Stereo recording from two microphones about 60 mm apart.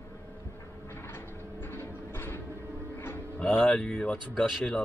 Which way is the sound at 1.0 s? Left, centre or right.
Left.